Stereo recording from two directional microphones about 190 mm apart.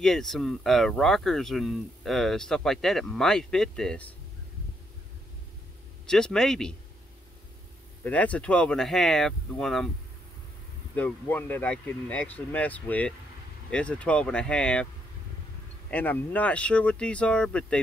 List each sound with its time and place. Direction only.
0.0 s speech: centre (ahead or behind)
6.0 s speech: 5° left (ahead or behind)
8.0 s speech: 5° left (ahead or behind)
11.0 s speech: 10° left (ahead or behind)
15.9 s speech: 10° left (ahead or behind)